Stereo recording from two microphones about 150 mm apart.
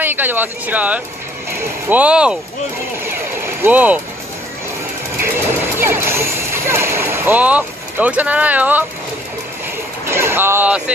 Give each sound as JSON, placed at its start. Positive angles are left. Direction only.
{"t": 0.0, "sound": "speech", "side_deg": -10}
{"t": 3.1, "sound": "a sound", "side_deg": -15}
{"t": 5.8, "sound": "speech", "side_deg": -15}
{"t": 10.0, "sound": "speech", "side_deg": -15}